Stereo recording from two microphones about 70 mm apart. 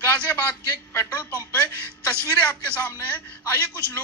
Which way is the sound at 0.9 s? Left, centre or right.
Left.